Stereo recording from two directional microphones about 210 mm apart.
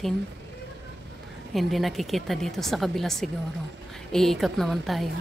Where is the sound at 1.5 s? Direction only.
Centre (ahead or behind).